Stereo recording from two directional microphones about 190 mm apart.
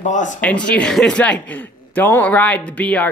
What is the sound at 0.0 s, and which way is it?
Speech, 40° left (ahead or behind).